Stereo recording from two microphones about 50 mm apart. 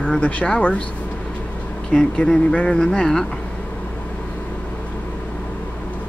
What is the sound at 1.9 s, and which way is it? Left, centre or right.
Speech, centre.